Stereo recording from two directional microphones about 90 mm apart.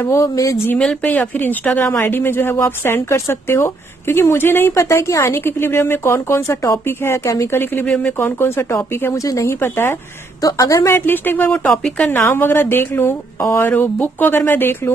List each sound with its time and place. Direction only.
0.0 s a woman's voice: 35° left (ahead or behind)
1.0 s speech: 15° left (ahead or behind); by 6.8 s 35° left (ahead or behind)
6.9 s speech: 25° left (ahead or behind)
7.8 s speech: 15° left (ahead or behind)
8.2 s speech: 25° left (ahead or behind)
10.4 s a woman's voice: 40° left (ahead or behind)
11.0 s speech: 20° left (ahead or behind)
11.6 s speech: 10° left (ahead or behind)
12.4 s speech: 25° left (ahead or behind)